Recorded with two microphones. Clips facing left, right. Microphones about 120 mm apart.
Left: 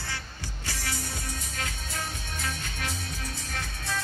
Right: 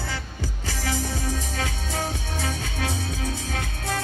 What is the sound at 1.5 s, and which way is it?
Music, 90° right.